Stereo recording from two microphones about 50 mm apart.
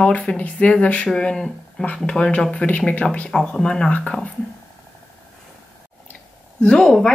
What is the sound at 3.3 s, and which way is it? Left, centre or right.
Speech, centre.